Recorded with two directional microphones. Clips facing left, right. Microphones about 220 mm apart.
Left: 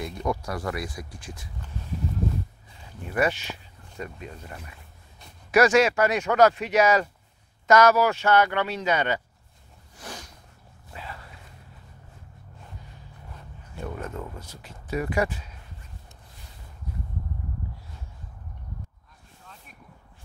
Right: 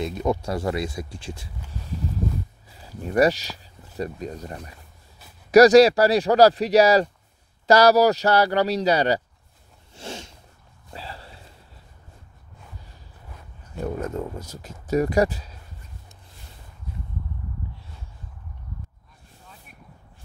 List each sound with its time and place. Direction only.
0.0 s speech: 25° right (ahead or behind)
2.8 s speech: 40° right (ahead or behind)
9.9 s a sound: 25° right (ahead or behind)
13.7 s speech: 40° right (ahead or behind)